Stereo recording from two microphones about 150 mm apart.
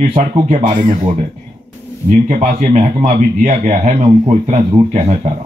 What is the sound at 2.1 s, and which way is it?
Speech, 55° right (ahead or behind).